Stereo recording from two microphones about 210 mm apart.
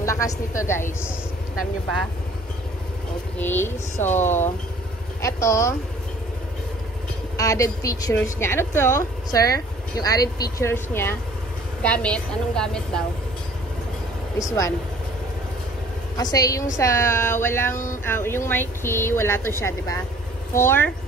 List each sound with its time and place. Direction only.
0.0 s a woman's voice: 15° left (ahead or behind)
3.3 s speech: 10° left (ahead or behind)
5.2 s speech: 15° left (ahead or behind)
7.3 s a woman's voice: 15° left (ahead or behind)
14.4 s speech: 15° left (ahead or behind)
16.2 s speech: 15° left (ahead or behind)